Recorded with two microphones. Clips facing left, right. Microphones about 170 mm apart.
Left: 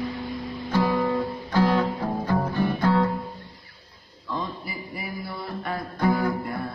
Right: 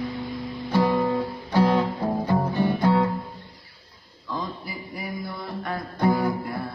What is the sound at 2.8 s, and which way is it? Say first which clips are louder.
Guitar: even; 15° right (ahead or behind).